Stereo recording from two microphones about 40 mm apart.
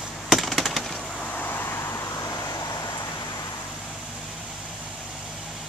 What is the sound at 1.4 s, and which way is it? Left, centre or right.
Vehicle, left.